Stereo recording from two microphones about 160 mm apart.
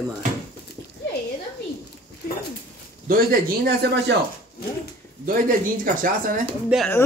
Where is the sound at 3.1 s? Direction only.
70° right (ahead or behind).